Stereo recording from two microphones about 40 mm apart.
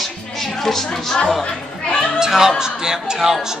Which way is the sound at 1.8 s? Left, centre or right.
Left.